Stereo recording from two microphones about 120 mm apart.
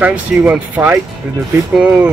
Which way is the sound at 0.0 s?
15° right (ahead or behind).